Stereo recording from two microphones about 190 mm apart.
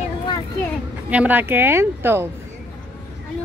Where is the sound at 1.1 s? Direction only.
10° right (ahead or behind).